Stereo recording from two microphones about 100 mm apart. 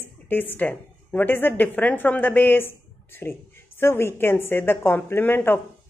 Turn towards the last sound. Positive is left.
turn(degrees=20)  # may be behind; listen again after turning